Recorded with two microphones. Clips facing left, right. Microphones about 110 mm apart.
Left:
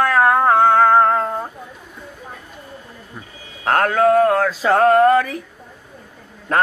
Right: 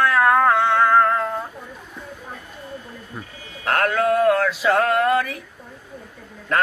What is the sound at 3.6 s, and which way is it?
Mantra, 30° left (ahead or behind).